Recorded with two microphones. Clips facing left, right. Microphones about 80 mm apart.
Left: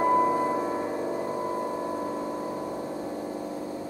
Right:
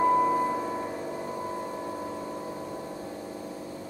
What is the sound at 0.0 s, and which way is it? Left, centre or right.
Music, centre.